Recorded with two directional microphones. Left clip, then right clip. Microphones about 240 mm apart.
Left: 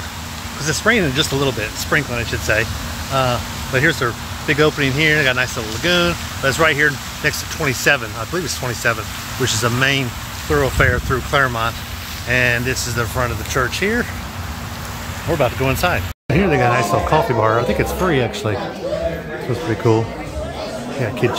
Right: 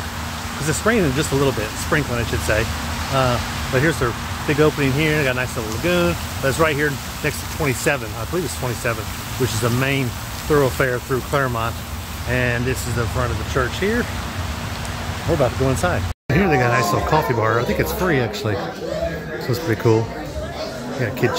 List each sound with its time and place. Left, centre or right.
0.7 s speech: centre
13.2 s speech: centre
15.4 s speech: centre
21.2 s speech: centre